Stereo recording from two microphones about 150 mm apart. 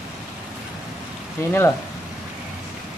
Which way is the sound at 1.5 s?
15° left (ahead or behind).